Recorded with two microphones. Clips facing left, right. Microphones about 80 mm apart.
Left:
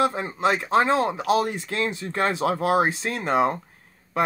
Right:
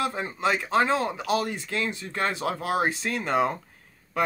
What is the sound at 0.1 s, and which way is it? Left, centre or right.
Speech, left.